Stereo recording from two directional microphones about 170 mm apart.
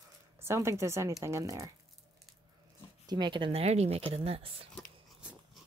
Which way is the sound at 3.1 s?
25° right (ahead or behind).